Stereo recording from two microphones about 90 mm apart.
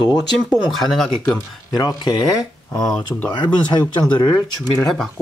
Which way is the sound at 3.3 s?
60° left (ahead or behind).